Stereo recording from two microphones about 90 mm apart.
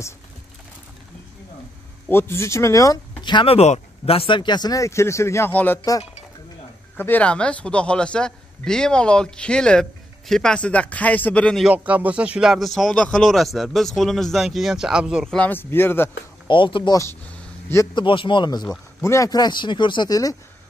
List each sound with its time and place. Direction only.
2.0 s speech: 25° left (ahead or behind)
3.2 s speech: 60° left (ahead or behind)
4.0 s speech: 90° left; by 4.7 s 55° left (ahead or behind)
4.7 s speech: 35° left (ahead or behind)
5.5 s speech: 20° left (ahead or behind)
7.0 s a man's voice: 20° left (ahead or behind)
11.6 s speech: 15° right (ahead or behind)
15.2 s a man's voice: 10° left (ahead or behind)
15.5 s speech: 25° left (ahead or behind)
16.4 s speech: 65° left (ahead or behind)
16.9 s speech: 35° left (ahead or behind)
17.9 s speech: 65° left (ahead or behind); by 18.7 s 50° left (ahead or behind)
19.0 s speech: 40° left (ahead or behind); by 20.1 s 60° left (ahead or behind)
20.1 s speech: 40° left (ahead or behind)